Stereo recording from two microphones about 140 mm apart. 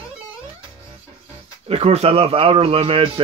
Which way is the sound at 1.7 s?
45° right (ahead or behind).